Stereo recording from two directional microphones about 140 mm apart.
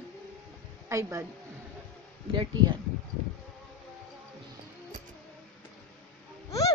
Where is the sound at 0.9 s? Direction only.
20° right (ahead or behind).